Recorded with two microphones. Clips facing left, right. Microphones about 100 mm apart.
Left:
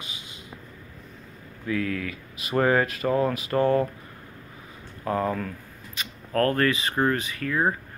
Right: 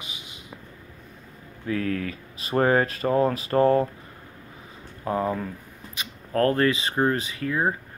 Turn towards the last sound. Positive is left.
turn(degrees=-25)  # may be behind; listen again after turning